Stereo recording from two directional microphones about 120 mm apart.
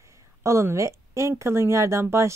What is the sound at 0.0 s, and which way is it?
Speech, 25° right (ahead or behind).